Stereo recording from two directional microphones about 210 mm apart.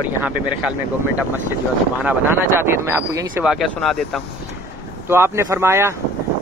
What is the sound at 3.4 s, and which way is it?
Speech, centre (ahead or behind).